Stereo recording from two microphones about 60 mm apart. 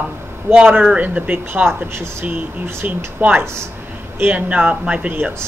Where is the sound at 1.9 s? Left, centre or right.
Right.